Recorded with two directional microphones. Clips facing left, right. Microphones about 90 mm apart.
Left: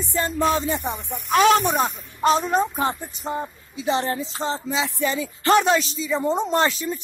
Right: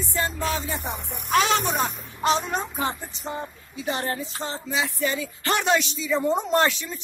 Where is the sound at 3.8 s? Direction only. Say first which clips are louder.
Left 5 dB; 25° left (ahead or behind).